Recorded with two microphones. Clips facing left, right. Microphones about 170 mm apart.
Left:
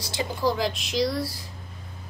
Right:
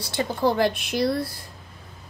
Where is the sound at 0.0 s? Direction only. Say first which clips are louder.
Right 3 dB; 55° right (ahead or behind).